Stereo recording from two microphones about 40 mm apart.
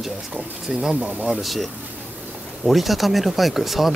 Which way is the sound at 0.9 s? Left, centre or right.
Right.